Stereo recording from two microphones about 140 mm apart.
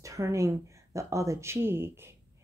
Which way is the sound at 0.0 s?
20° right (ahead or behind).